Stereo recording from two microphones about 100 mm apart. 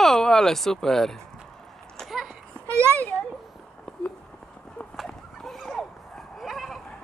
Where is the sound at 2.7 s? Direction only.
25° right (ahead or behind).